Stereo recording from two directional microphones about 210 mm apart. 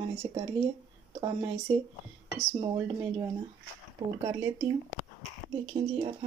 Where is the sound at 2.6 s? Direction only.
20° right (ahead or behind).